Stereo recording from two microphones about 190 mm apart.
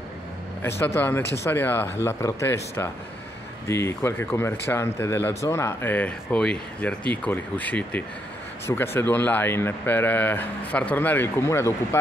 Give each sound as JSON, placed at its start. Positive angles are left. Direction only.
{"t": 0.6, "sound": "speech", "side_deg": 10}